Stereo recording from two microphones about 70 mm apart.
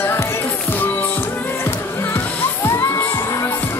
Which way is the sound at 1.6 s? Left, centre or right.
Left.